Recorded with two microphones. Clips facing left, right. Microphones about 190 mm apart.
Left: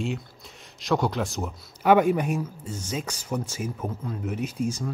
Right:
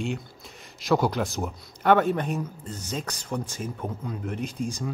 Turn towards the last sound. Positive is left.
turn(degrees=5)  # may be behind; listen again after turning